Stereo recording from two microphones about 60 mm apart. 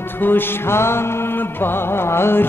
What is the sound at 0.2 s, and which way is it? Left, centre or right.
Music, left.